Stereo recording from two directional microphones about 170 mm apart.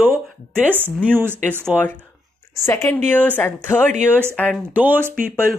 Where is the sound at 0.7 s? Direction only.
10° right (ahead or behind).